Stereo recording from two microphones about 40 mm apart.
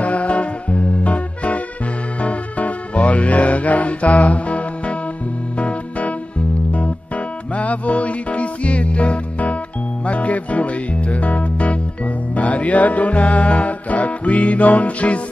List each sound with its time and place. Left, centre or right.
0.0 s music: left
7.5 s music: left